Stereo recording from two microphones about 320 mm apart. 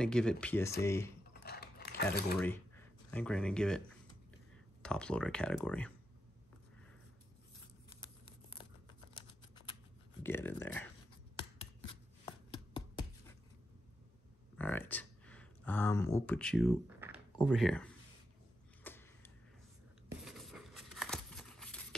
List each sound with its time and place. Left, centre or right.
0.0 s speech: centre
1.3 s mechanisms: left
3.1 s speech: centre
8.0 s tearing: centre
10.2 s speech: centre
11.9 s chopping: centre
14.6 s speech: centre
18.9 s a sound: centre